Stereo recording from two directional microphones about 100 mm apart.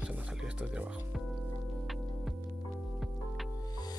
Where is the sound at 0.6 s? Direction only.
10° right (ahead or behind).